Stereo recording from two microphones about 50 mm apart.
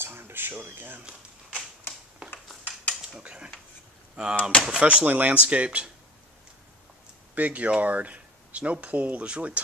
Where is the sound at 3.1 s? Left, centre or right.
Centre.